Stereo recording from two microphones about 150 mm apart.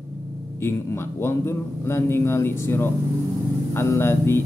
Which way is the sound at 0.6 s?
15° left (ahead or behind).